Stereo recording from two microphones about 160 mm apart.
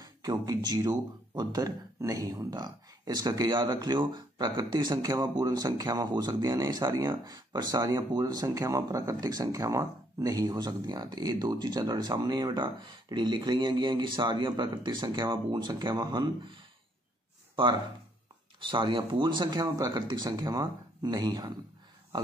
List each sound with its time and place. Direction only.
0.0 s speech: 25° right (ahead or behind)
18.7 s speech: 30° right (ahead or behind)